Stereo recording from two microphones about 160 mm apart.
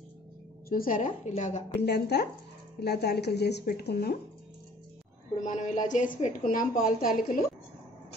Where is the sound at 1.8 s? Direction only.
90° left.